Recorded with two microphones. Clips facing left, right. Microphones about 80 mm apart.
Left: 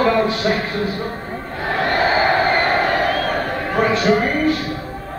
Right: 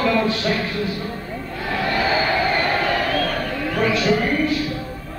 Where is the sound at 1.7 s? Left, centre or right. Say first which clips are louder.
Left 3 dB; left.